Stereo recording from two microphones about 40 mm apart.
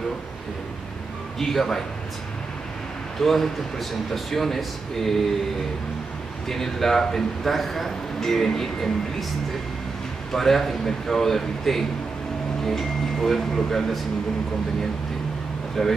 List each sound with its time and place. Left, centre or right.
1.4 s a man's voice: centre
3.2 s a man's voice: centre
6.5 s a man's voice: centre
10.3 s a man's voice: centre
15.8 s a man's voice: centre